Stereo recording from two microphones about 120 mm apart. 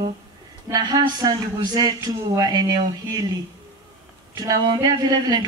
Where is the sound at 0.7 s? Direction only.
35° right (ahead or behind).